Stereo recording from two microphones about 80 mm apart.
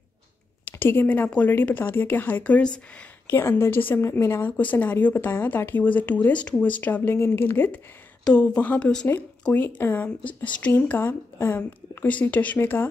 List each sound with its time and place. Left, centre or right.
0.7 s speech: left
3.3 s speech: left
8.2 s speech: centre
9.8 s speech: left